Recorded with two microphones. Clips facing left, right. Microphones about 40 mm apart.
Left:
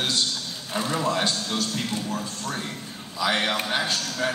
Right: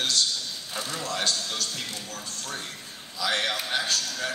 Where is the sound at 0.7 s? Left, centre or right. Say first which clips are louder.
Left 7 dB; left.